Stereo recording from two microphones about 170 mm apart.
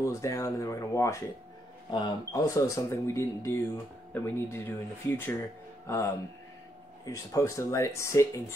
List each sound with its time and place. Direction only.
0.0 s speech: 20° left (ahead or behind)